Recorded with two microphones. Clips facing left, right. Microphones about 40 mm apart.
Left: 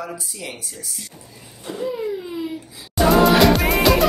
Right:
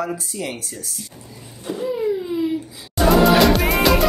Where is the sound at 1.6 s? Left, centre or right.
Centre.